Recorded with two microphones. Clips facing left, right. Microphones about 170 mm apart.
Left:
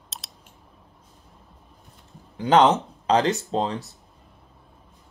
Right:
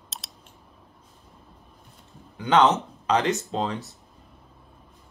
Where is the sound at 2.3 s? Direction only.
30° left (ahead or behind).